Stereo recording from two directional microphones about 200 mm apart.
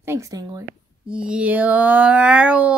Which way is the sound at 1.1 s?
5° right (ahead or behind).